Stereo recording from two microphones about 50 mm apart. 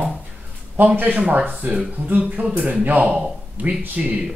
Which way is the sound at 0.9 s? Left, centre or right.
Right.